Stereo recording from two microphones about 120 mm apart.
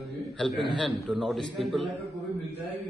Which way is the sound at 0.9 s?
Centre (ahead or behind).